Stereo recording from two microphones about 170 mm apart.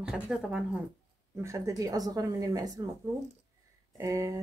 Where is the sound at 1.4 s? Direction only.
20° right (ahead or behind).